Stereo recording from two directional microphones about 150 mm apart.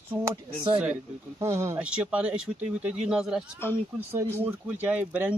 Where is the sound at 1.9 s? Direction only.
5° right (ahead or behind).